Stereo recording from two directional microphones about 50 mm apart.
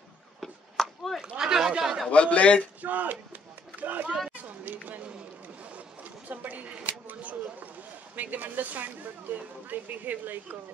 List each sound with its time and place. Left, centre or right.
0.4 s chop: centre
1.2 s speech: centre
2.0 s a man's voice: left
2.8 s speech: right
6.2 s speech: right